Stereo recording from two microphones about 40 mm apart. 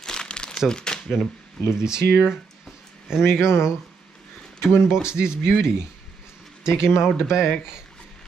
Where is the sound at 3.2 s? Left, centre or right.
Left.